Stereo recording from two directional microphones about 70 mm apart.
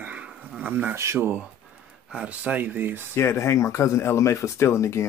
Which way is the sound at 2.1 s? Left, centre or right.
Centre.